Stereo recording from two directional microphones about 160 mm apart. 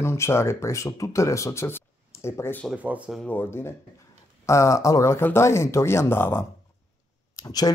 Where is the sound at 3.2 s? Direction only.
10° left (ahead or behind).